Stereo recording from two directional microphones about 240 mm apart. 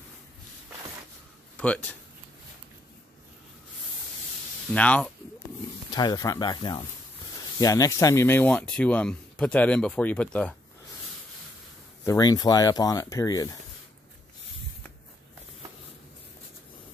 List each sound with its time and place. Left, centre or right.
1.6 s speech: centre
4.7 s speech: centre
5.9 s speech: centre
12.0 s speech: centre